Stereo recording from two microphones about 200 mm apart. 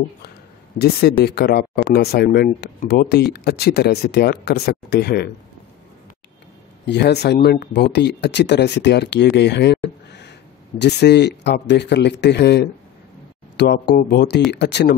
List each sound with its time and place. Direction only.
0.7 s speech: 55° left (ahead or behind)
6.9 s speech: 55° left (ahead or behind)